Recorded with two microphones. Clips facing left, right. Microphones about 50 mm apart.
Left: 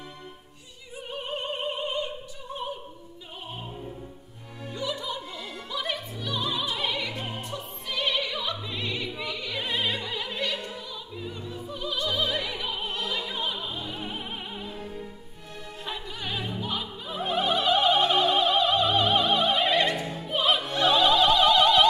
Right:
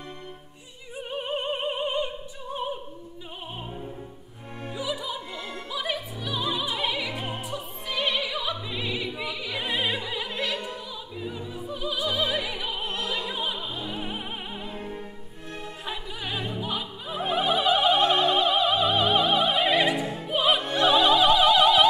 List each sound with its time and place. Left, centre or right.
1.1 s opera: centre
4.7 s music: centre
5.7 s opera: centre
14.7 s opera: right
15.8 s opera: centre